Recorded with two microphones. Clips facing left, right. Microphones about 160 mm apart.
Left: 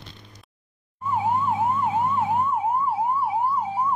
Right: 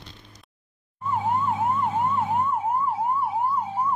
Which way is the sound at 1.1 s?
10° left (ahead or behind).